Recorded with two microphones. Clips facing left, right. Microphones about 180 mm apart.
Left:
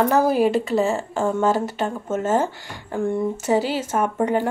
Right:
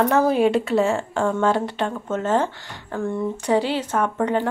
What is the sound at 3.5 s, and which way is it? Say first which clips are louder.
Speech: right 1 dB; 5° left (ahead or behind).